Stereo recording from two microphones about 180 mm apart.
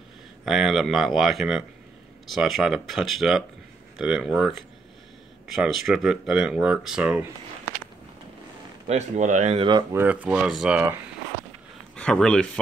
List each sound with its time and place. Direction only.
0.5 s speech: centre (ahead or behind)
8.8 s speech: 40° right (ahead or behind)
9.9 s speech: 10° right (ahead or behind)
11.9 s speech: 5° left (ahead or behind)